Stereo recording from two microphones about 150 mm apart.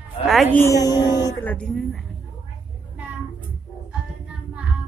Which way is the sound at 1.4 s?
10° left (ahead or behind).